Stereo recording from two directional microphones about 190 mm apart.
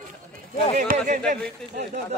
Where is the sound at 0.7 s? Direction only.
40° right (ahead or behind).